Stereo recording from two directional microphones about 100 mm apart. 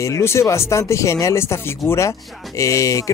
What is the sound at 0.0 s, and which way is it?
Speech, 30° left (ahead or behind).